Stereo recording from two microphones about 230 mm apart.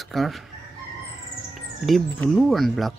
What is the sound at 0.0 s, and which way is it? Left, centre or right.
Speech, centre.